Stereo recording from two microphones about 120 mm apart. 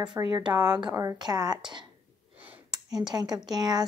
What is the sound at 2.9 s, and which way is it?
Speech, 35° right (ahead or behind).